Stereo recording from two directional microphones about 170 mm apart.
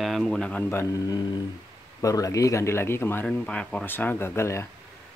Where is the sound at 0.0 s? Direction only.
Centre (ahead or behind).